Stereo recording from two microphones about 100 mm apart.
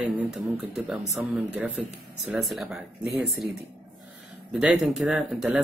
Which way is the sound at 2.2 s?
Centre (ahead or behind).